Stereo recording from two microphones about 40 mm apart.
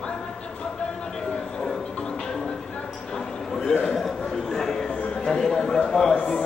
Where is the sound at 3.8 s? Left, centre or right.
Centre.